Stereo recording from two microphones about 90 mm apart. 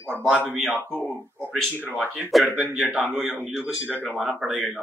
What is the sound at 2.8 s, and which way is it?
A man's voice, 10° right (ahead or behind).